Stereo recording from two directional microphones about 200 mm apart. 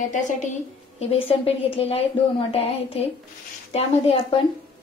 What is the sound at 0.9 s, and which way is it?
A woman's voice, 30° left (ahead or behind).